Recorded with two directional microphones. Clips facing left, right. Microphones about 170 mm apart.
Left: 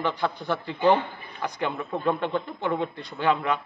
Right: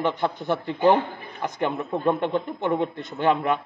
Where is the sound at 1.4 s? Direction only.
20° right (ahead or behind).